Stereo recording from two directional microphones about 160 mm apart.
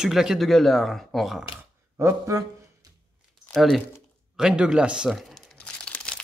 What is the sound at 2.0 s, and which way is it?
Speech, 20° right (ahead or behind).